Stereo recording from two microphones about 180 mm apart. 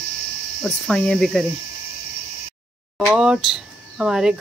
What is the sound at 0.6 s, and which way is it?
Speech, centre (ahead or behind).